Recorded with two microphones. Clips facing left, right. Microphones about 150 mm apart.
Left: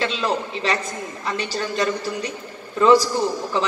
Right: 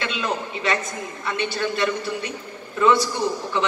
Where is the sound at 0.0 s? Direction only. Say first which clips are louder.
Left 3 dB; 35° left (ahead or behind).